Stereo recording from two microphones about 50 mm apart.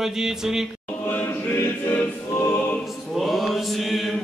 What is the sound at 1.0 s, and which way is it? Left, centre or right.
Choir, left.